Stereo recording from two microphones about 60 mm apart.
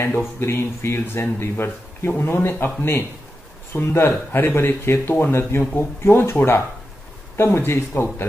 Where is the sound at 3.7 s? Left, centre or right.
Left.